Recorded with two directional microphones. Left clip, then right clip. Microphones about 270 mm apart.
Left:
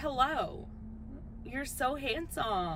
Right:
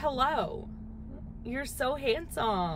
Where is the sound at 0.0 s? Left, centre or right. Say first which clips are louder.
Right 2 dB; centre.